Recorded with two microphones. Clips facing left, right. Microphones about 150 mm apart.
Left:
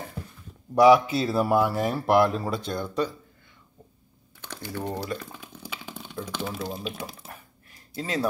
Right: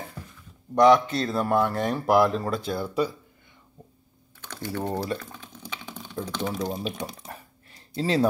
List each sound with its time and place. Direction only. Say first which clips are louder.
0.7 s speech: left 1 dB; 5° left (ahead or behind); by 3.2 s 10° right (ahead or behind)
4.4 s typing: right 3 dB; 10° left (ahead or behind)
5.2 s boiling: left 1 dB; 10° left (ahead or behind)
6.2 s speech: right 4 dB; 10° left (ahead or behind)
7.9 s speech: right 5 dB; 30° right (ahead or behind)